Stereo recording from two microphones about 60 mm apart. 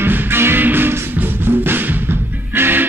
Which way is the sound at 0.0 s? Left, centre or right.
Right.